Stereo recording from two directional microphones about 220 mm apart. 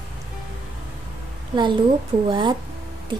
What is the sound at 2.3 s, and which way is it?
Speech, 20° right (ahead or behind).